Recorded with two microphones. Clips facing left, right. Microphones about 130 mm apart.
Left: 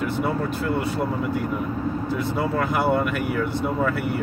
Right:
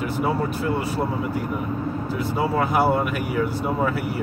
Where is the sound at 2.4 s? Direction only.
5° right (ahead or behind).